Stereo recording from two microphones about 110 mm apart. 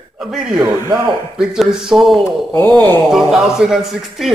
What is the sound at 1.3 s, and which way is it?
Speech, 5° right (ahead or behind).